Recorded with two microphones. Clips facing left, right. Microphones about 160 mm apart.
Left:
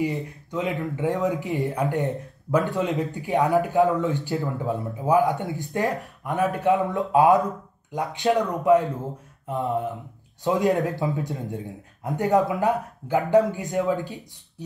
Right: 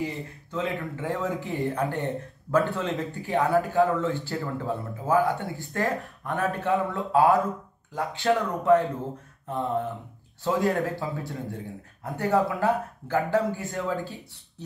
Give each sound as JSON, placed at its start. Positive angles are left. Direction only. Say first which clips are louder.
{"t": 0.0, "sound": "speech", "louder": "left 5 dB", "side_deg": 15}
{"t": 10.4, "sound": "speech", "louder": "left 3 dB", "side_deg": 15}